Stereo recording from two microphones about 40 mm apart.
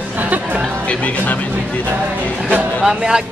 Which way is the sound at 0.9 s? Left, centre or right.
Left.